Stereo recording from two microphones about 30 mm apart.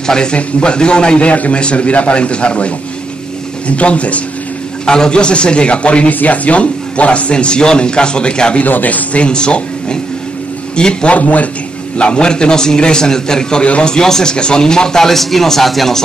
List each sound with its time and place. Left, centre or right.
0.0 s a man's voice: left
1.2 s speech: left
4.8 s speech: left
6.2 s speech: left
8.6 s a man's voice: left
9.2 s a man's voice: left
11.1 s a man's voice: left
12.0 s a man's voice: left
15.0 s speech: centre